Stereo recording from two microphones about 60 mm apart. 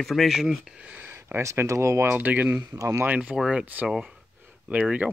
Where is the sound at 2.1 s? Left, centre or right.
Right.